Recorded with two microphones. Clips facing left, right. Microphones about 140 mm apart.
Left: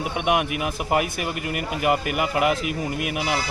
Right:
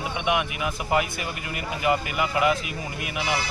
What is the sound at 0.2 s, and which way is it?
A man's voice, 55° left (ahead or behind).